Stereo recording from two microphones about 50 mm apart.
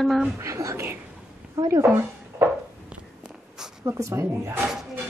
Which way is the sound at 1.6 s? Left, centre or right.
Right.